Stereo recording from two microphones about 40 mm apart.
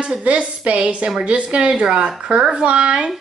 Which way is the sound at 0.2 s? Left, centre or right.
Right.